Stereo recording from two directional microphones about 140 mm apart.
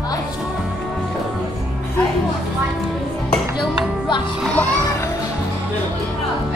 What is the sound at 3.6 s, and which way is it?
Music, 35° left (ahead or behind).